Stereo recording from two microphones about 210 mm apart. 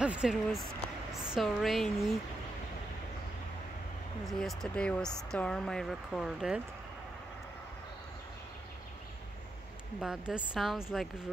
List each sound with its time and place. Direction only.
0.0 s speech: 5° right (ahead or behind)
4.3 s speech: centre (ahead or behind)
9.9 s speech: 5° right (ahead or behind)